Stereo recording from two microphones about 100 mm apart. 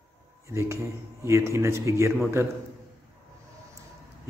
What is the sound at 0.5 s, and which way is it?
Speech, 25° right (ahead or behind).